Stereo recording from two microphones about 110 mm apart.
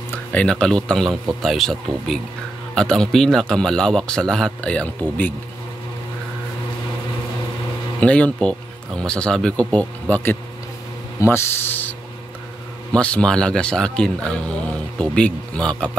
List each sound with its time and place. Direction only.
0.1 s a man's voice: 15° left (ahead or behind)
8.0 s speech: 10° left (ahead or behind)
12.9 s speech: 10° left (ahead or behind)